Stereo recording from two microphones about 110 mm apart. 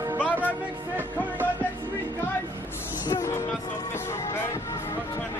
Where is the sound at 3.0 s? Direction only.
25° left (ahead or behind).